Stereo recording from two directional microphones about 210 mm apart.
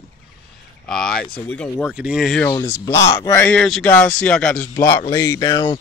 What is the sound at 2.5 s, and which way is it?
Speech, 10° left (ahead or behind).